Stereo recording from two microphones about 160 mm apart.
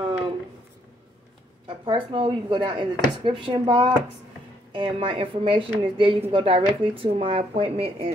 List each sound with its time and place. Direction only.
1.9 s speech: 30° right (ahead or behind)